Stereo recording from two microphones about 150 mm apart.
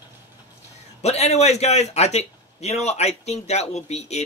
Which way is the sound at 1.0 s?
45° left (ahead or behind).